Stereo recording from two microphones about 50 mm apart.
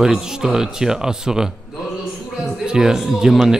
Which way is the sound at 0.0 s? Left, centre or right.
Centre.